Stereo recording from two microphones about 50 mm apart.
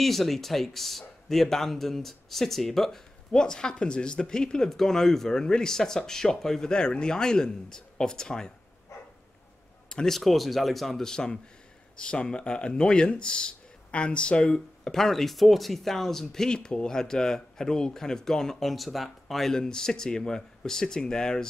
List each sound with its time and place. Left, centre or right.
0.0 s speech: centre
9.8 s speech: centre
11.1 s speech: centre
14.9 s speech: centre